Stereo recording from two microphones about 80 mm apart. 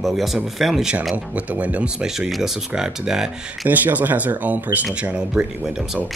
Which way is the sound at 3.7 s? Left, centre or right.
Right.